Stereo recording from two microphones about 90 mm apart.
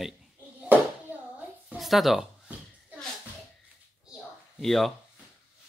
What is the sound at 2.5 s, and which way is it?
Shuffle, 15° right (ahead or behind).